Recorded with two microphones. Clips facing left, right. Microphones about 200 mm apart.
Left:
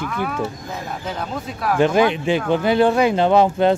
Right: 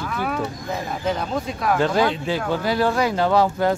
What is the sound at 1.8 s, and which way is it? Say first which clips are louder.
Speech: left 6 dB; 20° left (ahead or behind).